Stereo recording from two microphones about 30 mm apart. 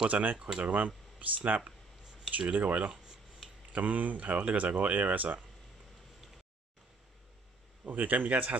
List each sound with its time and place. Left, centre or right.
0.1 s speech: right
7.8 s speech: right